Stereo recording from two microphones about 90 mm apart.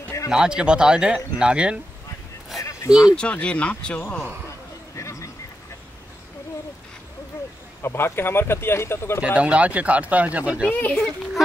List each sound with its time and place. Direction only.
0.3 s speech: 10° right (ahead or behind)
2.9 s speech: 5° right (ahead or behind)
3.2 s speech: 10° left (ahead or behind)
4.9 s a sound: 35° left (ahead or behind)
7.8 s speech: 25° left (ahead or behind)
9.2 s speech: 15° right (ahead or behind)
10.7 s speech: 20° left (ahead or behind)